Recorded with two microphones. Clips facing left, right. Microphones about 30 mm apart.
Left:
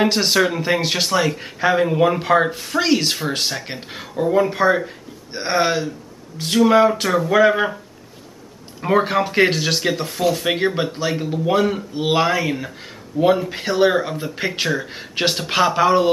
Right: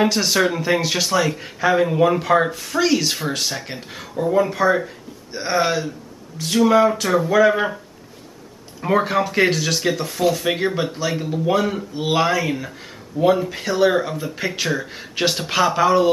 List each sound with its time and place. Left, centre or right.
0.0 s speech: centre
8.8 s speech: centre